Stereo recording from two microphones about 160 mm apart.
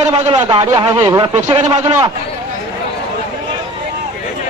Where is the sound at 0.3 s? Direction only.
30° right (ahead or behind).